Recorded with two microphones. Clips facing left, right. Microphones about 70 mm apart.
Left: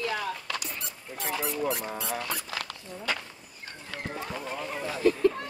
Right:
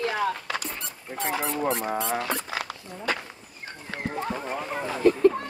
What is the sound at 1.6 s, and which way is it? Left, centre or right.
Speech, right.